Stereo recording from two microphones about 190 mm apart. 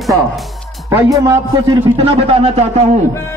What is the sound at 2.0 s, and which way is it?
Speech, 30° right (ahead or behind).